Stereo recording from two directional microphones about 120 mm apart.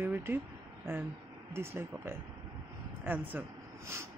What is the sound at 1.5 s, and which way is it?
Speech, 20° right (ahead or behind).